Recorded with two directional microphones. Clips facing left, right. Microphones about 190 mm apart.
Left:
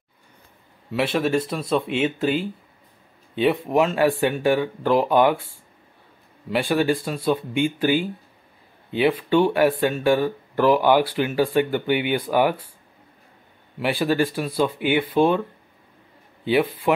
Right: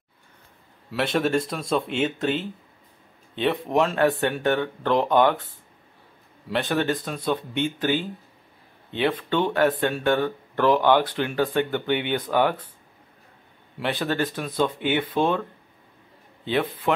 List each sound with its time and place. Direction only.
0.9 s speech: 5° left (ahead or behind)
6.5 s speech: 5° left (ahead or behind)
13.7 s speech: 10° left (ahead or behind)
16.9 s speech: 10° left (ahead or behind)